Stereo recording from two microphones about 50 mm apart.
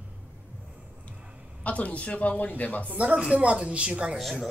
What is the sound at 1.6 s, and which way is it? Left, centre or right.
Speech, left.